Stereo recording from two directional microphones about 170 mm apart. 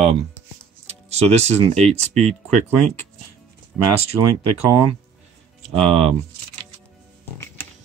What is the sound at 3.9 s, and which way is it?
Speech, 35° right (ahead or behind).